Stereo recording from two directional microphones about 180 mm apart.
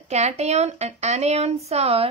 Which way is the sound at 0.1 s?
40° right (ahead or behind).